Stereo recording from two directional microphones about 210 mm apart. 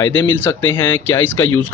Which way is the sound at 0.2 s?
10° left (ahead or behind).